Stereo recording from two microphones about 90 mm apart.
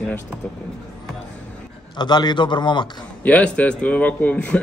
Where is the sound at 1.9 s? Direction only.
55° left (ahead or behind).